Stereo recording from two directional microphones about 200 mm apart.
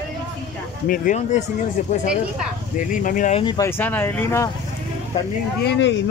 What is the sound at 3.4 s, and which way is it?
Speech, 20° left (ahead or behind).